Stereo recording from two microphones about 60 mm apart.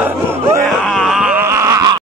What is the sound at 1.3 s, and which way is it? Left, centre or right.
Groan, right.